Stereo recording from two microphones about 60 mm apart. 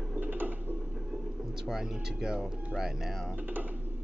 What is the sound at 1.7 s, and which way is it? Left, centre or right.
Speech, centre.